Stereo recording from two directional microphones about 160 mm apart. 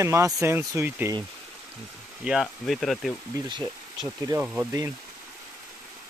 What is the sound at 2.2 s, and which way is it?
Speech, 5° right (ahead or behind).